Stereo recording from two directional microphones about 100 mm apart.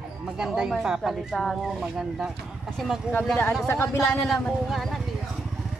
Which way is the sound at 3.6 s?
25° left (ahead or behind).